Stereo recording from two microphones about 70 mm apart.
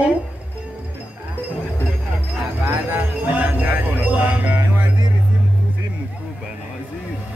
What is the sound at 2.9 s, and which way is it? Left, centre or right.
Music, right.